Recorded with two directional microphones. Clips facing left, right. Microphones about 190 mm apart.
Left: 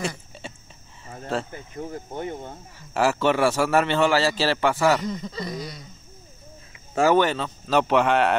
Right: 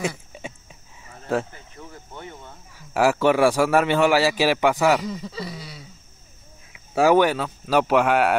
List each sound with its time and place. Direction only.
1.8 s speech: 45° left (ahead or behind)
2.9 s a man's voice: 10° right (ahead or behind)
7.0 s a man's voice: 10° right (ahead or behind)